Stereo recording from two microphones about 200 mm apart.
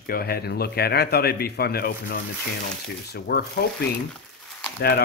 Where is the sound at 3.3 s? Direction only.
50° left (ahead or behind).